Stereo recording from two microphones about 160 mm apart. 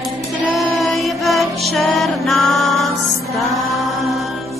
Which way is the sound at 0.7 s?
Centre (ahead or behind).